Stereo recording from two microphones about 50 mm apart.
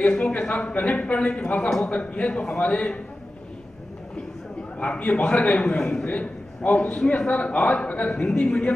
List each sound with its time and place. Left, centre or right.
0.0 s a man's voice: centre
4.7 s a man's voice: left